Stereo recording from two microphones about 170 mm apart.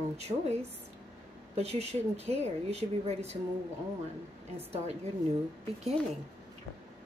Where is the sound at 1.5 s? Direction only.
40° right (ahead or behind).